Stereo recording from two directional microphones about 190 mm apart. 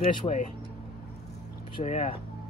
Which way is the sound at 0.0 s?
35° left (ahead or behind).